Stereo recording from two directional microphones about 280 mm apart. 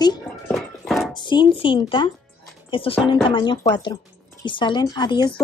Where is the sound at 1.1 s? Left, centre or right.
Centre.